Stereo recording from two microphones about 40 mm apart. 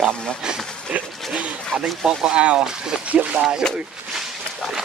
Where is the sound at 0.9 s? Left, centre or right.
Right.